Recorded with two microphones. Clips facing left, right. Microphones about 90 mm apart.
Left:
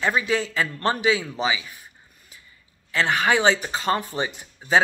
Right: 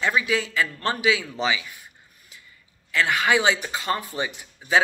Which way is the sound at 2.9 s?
30° left (ahead or behind).